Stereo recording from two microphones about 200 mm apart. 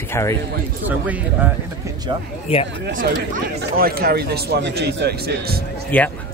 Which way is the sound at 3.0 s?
45° right (ahead or behind).